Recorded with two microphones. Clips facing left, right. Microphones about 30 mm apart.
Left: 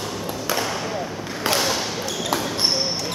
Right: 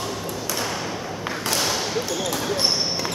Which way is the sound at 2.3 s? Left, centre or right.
Centre.